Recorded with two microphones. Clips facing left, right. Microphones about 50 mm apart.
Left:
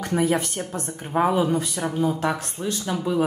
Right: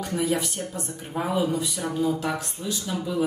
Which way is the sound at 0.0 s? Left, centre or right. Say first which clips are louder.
Left 3 dB; left.